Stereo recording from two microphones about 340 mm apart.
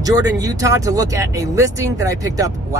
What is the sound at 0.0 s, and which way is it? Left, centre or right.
Speech, centre.